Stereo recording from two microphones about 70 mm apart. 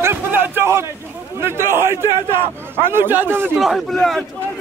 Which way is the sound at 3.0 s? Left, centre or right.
Right.